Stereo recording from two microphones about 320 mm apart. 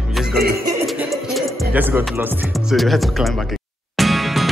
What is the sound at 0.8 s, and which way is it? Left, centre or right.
Music, centre.